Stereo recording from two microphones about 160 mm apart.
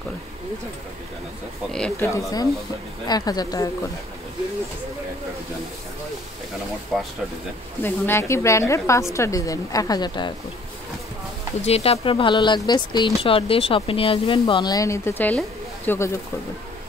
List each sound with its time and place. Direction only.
2.0 s a woman's voice: 20° left (ahead or behind)
6.9 s speech: centre (ahead or behind)
7.8 s a woman's voice: 15° left (ahead or behind)
11.6 s speech: 40° left (ahead or behind); by 16.2 s 15° left (ahead or behind)